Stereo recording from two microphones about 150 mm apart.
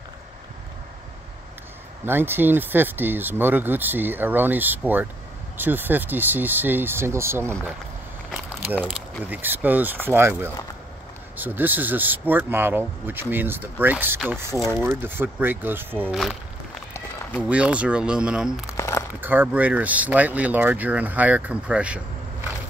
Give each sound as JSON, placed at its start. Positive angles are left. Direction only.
{"t": 2.0, "sound": "speech", "side_deg": -15}
{"t": 8.3, "sound": "a sound", "side_deg": -10}
{"t": 9.2, "sound": "speech", "side_deg": -10}
{"t": 17.4, "sound": "speech", "side_deg": -10}
{"t": 18.7, "sound": "crumpling", "side_deg": 20}
{"t": 19.2, "sound": "speech", "side_deg": -10}